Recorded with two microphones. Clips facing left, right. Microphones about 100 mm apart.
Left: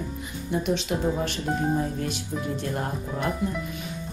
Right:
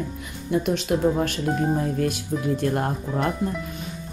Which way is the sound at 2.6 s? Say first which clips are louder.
Right 5 dB; 50° right (ahead or behind).